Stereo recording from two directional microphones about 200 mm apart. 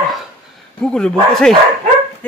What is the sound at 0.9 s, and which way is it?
Speech, 5° left (ahead or behind).